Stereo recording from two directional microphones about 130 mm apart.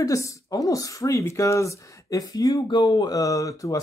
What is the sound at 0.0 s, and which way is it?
Speech, 25° left (ahead or behind).